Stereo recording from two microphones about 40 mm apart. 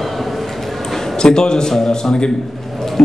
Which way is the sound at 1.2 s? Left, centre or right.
Centre.